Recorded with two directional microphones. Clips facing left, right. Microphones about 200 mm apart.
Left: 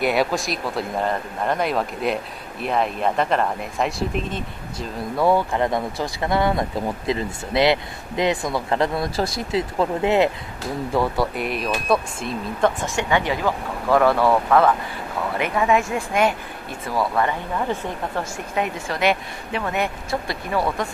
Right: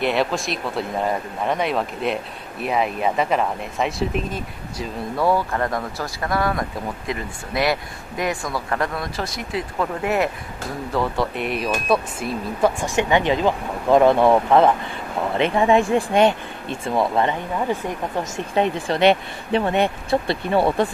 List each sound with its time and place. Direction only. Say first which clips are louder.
0.0 s speech: even; 5° left (ahead or behind)
5.1 s speech: left 2 dB; 15° left (ahead or behind)
10.9 s speech: left 1 dB; 10° left (ahead or behind); by 18.4 s 15° right (ahead or behind)
18.5 s speech: right 6 dB; 30° right (ahead or behind)